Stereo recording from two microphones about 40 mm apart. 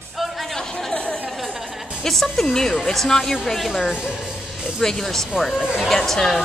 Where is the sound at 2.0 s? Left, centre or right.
Centre.